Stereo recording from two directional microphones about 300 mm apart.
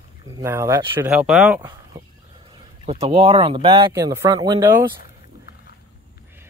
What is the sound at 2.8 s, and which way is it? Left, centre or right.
Speech, centre.